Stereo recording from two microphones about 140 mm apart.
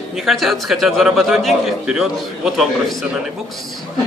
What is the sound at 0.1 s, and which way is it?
A man's voice, centre (ahead or behind).